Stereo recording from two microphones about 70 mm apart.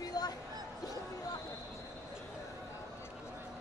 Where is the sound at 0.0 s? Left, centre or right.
Left.